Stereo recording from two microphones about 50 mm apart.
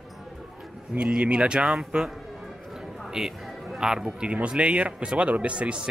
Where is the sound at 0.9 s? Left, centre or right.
Centre.